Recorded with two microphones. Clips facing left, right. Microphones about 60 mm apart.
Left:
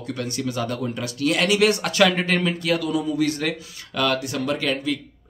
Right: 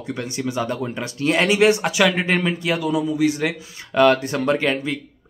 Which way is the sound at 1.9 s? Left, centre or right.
Centre.